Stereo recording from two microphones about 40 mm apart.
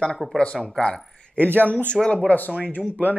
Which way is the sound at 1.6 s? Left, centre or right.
Left.